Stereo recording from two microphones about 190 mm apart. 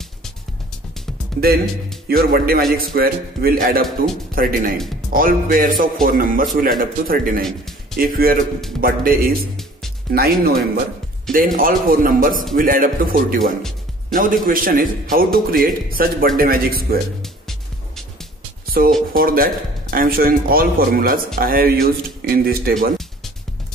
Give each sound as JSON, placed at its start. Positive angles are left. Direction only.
{"t": 2.0, "sound": "a man's voice", "side_deg": -55}
{"t": 7.4, "sound": "music", "side_deg": 0}
{"t": 8.0, "sound": "a man's voice", "side_deg": -50}
{"t": 17.2, "sound": "music", "side_deg": 0}
{"t": 18.8, "sound": "a man's voice", "side_deg": -50}